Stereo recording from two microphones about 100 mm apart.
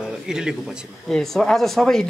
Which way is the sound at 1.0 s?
5° left (ahead or behind).